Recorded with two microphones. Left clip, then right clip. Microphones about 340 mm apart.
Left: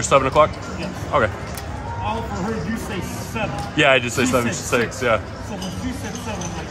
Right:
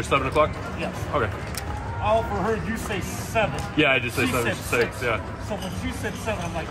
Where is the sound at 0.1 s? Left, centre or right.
Left.